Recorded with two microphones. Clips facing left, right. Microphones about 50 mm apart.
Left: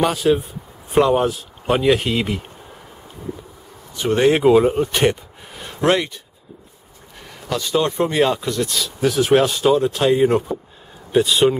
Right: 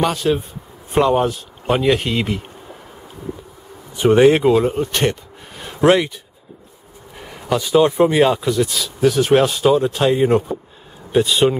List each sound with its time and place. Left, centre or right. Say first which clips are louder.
0.0 s speech: left 1 dB; centre
3.9 s speech: right 6 dB; centre
4.2 s speech: left 1 dB; centre
7.2 s speech: right 4 dB; centre